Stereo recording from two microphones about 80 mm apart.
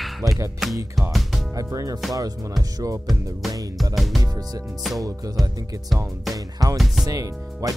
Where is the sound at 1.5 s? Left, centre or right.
Right.